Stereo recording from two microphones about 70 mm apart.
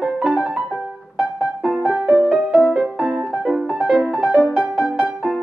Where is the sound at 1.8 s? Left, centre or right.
Centre.